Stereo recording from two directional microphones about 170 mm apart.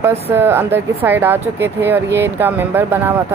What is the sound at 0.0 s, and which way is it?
Speech, 15° right (ahead or behind).